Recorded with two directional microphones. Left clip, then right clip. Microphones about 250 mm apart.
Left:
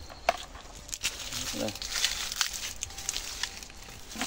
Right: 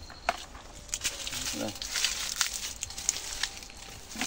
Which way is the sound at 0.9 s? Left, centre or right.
Left.